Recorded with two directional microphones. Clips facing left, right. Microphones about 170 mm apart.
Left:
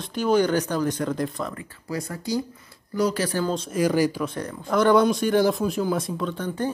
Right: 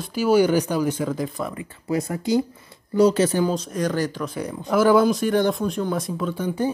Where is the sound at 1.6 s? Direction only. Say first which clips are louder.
Right 6 dB; 20° right (ahead or behind).